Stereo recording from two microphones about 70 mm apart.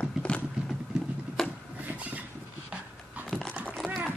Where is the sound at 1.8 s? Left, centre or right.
Right.